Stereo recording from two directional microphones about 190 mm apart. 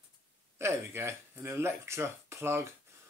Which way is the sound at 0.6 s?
15° right (ahead or behind).